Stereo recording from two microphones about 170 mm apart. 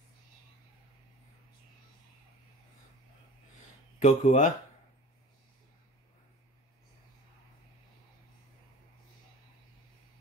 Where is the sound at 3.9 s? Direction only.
50° left (ahead or behind).